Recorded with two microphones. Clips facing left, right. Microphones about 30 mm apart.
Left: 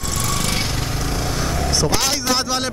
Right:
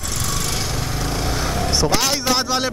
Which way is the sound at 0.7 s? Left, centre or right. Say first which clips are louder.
Even; centre.